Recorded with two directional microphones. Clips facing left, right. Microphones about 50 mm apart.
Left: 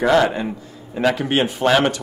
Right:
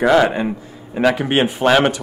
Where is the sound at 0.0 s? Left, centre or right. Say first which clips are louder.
Right 2 dB; centre.